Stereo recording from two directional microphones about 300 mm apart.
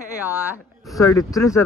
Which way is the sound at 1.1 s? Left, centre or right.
Centre.